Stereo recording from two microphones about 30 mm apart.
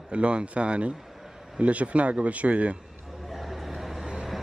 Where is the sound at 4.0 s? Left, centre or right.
Right.